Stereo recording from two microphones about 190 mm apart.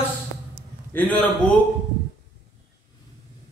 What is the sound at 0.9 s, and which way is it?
Speech, 10° left (ahead or behind).